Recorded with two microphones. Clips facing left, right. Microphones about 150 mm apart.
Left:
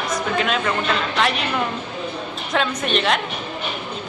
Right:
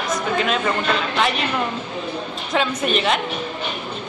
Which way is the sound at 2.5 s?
5° right (ahead or behind).